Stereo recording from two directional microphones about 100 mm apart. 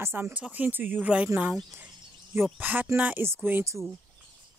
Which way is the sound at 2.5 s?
20° right (ahead or behind).